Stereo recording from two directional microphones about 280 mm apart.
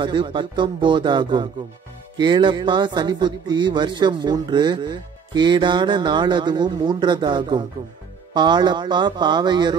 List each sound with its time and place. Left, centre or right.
0.0 s a man's voice: centre